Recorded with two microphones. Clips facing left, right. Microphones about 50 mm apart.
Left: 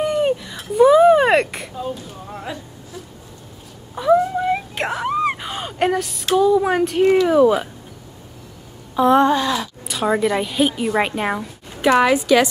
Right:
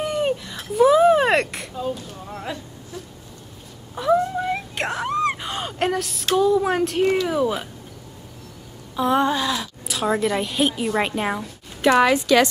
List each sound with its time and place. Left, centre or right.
0.0 s a sound: centre
3.9 s wail: centre
6.3 s a woman's voice: centre
7.2 s speech: left
8.9 s a woman's voice: centre